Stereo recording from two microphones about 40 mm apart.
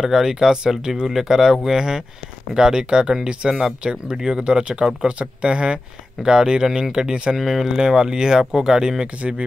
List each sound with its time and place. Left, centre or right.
0.0 s speech: centre